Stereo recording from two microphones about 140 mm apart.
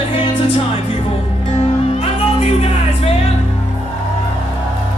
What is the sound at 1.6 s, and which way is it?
Music, 45° left (ahead or behind).